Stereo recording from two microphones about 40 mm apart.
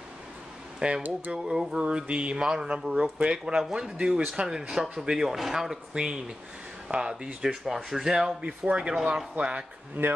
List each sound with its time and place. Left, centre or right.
0.7 s speech: centre
4.9 s speech: right
5.2 s speech: centre; by 7.2 s right
7.4 s speech: centre
8.5 s speech: right
10.0 s speech: right